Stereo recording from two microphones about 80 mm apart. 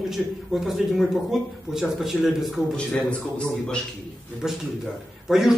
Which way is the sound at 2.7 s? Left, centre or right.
Centre.